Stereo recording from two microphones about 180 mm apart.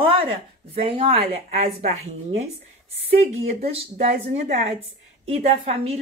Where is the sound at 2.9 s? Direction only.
35° right (ahead or behind).